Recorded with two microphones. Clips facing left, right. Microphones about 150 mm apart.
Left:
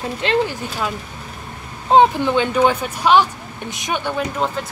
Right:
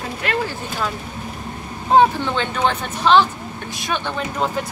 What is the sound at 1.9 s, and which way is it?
Speech, 15° left (ahead or behind).